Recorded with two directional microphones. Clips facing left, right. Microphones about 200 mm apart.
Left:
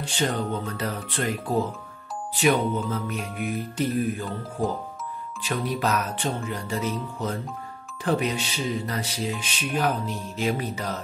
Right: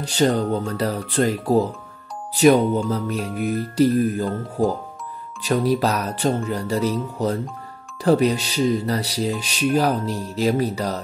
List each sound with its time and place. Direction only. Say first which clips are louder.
0.0 s speech: right 7 dB; 40° right (ahead or behind)
5.4 s speech: right 8 dB; 40° right (ahead or behind)